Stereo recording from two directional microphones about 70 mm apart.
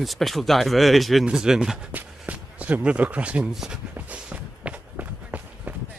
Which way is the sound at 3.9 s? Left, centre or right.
Right.